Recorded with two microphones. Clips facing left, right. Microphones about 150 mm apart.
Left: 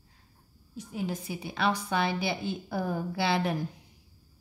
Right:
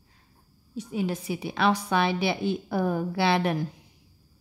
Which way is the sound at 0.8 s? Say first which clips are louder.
Right 5 dB; 80° right.